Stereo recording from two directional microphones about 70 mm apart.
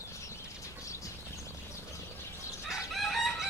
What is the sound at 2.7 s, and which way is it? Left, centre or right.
Chicken, centre.